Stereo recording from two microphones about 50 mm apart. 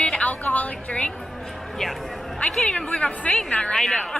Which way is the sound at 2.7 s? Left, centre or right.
Left.